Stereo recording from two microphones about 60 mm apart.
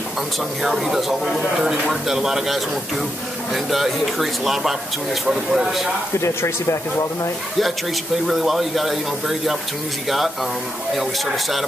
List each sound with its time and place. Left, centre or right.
0.6 s speech: centre
6.1 s speech: left
8.3 s speech: centre